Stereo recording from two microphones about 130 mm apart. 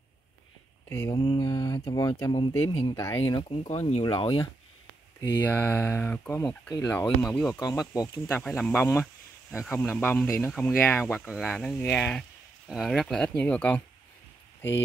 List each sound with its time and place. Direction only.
0.8 s speech: 20° left (ahead or behind)
1.1 s speech: 40° left (ahead or behind)
1.4 s speech: 25° left (ahead or behind)
2.3 s speech: 45° left (ahead or behind)
2.9 s speech: 25° left (ahead or behind)
3.3 s speech: 50° left (ahead or behind)
4.0 s speech: 40° left (ahead or behind)
5.4 s speech: 15° left (ahead or behind)
7.6 s speech: 30° left (ahead or behind)
8.1 s speech: 15° left (ahead or behind)